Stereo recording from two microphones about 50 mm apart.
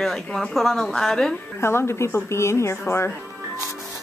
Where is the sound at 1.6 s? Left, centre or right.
Left.